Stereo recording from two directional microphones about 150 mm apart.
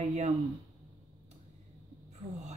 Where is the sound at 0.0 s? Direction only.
45° right (ahead or behind).